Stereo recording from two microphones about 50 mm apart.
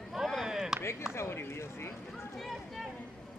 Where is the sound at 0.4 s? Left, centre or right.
Centre.